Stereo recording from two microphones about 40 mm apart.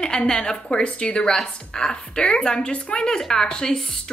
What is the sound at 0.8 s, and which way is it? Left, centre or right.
A woman's voice, left.